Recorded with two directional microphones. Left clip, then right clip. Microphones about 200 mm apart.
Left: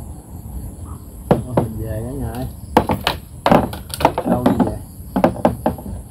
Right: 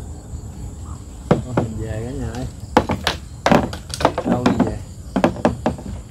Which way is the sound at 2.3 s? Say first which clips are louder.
Left 1 dB; 25° left (ahead or behind).